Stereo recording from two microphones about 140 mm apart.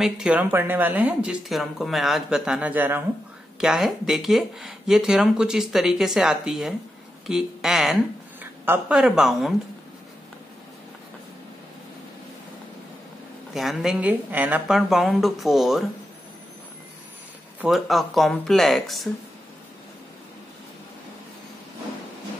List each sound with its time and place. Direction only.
0.0 s speech: 5° right (ahead or behind)
8.4 s speech: 10° right (ahead or behind)
13.5 s speech: centre (ahead or behind)
14.7 s speech: centre (ahead or behind)
17.6 s speech: centre (ahead or behind)